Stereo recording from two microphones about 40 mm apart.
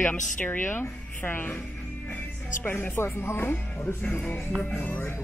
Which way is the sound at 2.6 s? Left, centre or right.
Left.